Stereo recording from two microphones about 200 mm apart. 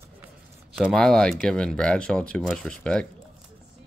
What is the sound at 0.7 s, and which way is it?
Speech, centre (ahead or behind).